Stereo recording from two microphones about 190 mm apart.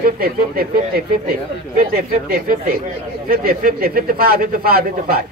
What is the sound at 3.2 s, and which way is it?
Speech, 50° right (ahead or behind).